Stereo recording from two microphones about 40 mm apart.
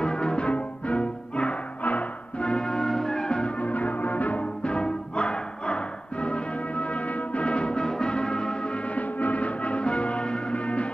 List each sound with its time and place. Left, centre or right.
0.0 s music: left
1.8 s music: left
2.4 s change ringing: left
3.6 s music: left
4.6 s music: left
8.9 s music: left